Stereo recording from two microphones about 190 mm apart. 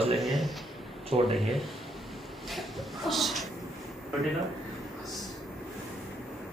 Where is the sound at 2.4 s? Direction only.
Centre (ahead or behind).